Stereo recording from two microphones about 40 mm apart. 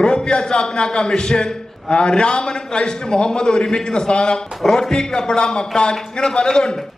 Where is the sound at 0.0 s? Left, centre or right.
Left.